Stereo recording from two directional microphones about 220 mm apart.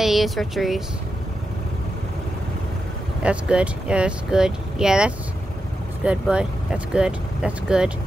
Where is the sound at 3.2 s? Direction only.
5° right (ahead or behind).